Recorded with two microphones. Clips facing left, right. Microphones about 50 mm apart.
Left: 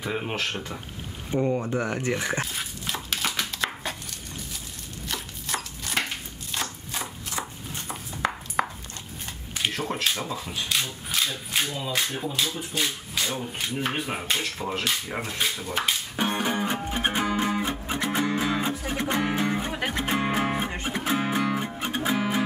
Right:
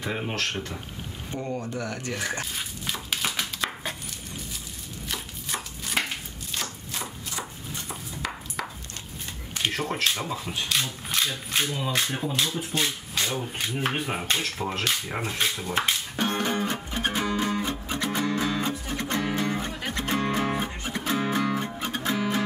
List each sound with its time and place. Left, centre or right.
0.0 s speech: centre; by 2.4 s left
2.4 s dog: centre
5.0 s chopping: centre
6.5 s a sound: centre
9.5 s speech: centre
16.2 s music: centre